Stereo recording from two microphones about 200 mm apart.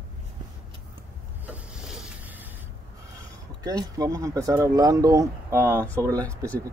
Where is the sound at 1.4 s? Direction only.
5° right (ahead or behind).